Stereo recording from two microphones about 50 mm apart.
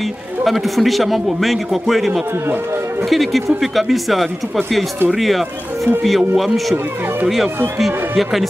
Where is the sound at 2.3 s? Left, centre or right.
Right.